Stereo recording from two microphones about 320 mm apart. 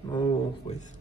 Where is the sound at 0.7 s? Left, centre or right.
Centre.